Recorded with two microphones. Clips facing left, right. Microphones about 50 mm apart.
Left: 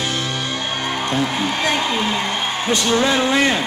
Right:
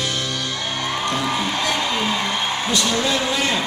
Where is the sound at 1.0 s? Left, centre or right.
Left.